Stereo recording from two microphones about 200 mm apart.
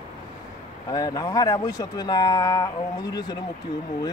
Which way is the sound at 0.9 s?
20° left (ahead or behind).